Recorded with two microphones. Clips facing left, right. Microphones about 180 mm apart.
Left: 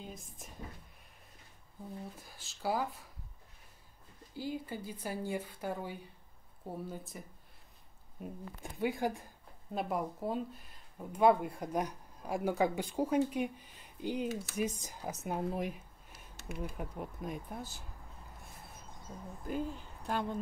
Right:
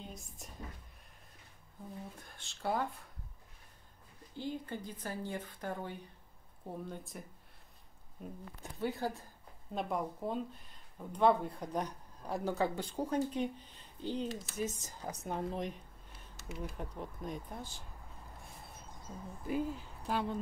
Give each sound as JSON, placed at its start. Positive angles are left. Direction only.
{"t": 0.0, "sound": "speech", "side_deg": 0}
{"t": 2.1, "sound": "speech", "side_deg": 5}
{"t": 4.4, "sound": "speech", "side_deg": 10}
{"t": 16.3, "sound": "a sound", "side_deg": 60}
{"t": 16.7, "sound": "speech", "side_deg": 5}
{"t": 19.4, "sound": "speech", "side_deg": -5}